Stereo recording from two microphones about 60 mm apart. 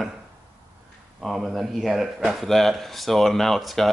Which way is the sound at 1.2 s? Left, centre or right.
Centre.